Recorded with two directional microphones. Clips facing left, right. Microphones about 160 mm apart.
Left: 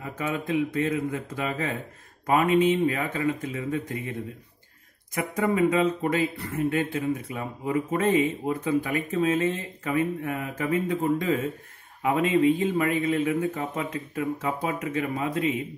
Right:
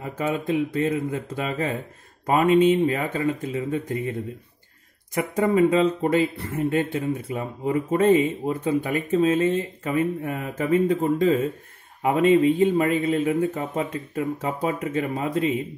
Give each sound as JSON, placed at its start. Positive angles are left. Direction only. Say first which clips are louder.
{"t": 0.2, "sound": "speech", "louder": "right 3 dB", "side_deg": -30}
{"t": 5.1, "sound": "speech", "louder": "right 4 dB", "side_deg": -30}